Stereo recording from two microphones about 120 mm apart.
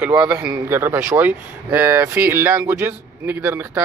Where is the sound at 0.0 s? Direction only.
10° right (ahead or behind).